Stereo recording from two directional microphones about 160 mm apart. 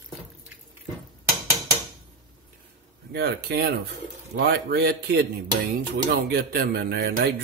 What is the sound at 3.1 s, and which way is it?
Speech, 90° right.